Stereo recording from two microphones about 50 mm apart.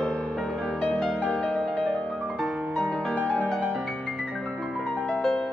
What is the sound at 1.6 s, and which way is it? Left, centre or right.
Music, centre.